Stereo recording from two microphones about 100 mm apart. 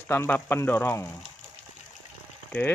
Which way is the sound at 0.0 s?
20° left (ahead or behind).